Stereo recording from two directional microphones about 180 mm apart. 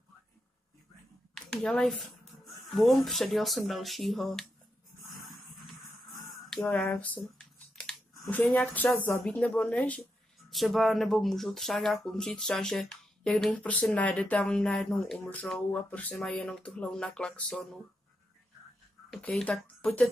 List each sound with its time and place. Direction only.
1.3 s speech: centre (ahead or behind)
6.4 s speech: centre (ahead or behind)
19.1 s speech: 5° left (ahead or behind)